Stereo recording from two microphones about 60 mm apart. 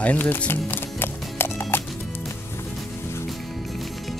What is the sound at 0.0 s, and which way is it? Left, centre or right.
Speech, left.